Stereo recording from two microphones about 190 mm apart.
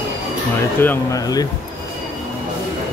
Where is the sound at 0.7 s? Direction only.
15° left (ahead or behind).